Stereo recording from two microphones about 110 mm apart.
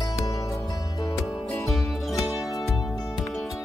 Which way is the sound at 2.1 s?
30° left (ahead or behind).